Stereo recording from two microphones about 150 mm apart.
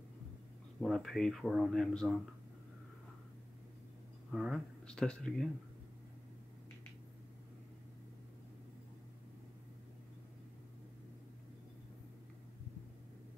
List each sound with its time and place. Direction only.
0.7 s speech: centre (ahead or behind)
4.3 s speech: centre (ahead or behind)